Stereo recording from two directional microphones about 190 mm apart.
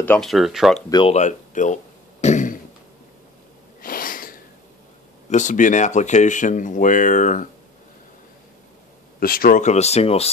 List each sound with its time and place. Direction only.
0.0 s speech: 5° left (ahead or behind)
0.8 s speech: 20° left (ahead or behind)
1.1 s speech: 40° left (ahead or behind)
2.2 s throat clearing: 40° left (ahead or behind)
3.8 s a sound: 50° left (ahead or behind)
5.3 s speech: 40° left (ahead or behind)
9.2 s speech: 50° left (ahead or behind); by 10.3 s 30° left (ahead or behind)